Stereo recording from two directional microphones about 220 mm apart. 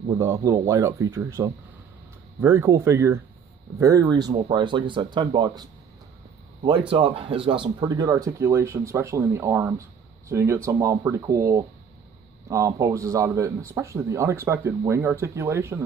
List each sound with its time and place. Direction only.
0.1 s speech: 15° right (ahead or behind)
4.3 s speech: 30° right (ahead or behind)
4.6 s speech: 20° right (ahead or behind)
6.9 s speech: 25° right (ahead or behind)